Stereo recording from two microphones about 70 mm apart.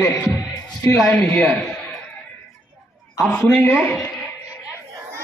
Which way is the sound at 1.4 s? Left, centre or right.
Centre.